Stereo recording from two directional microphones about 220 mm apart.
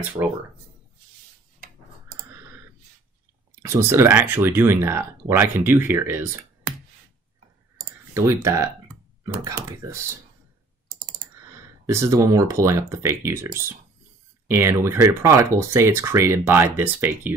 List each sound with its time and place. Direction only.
0.2 s speech: 20° right (ahead or behind)
3.6 s speech: 10° right (ahead or behind)
8.1 s speech: 15° right (ahead or behind)
11.5 s speech: 15° right (ahead or behind)
14.5 s speech: 10° right (ahead or behind)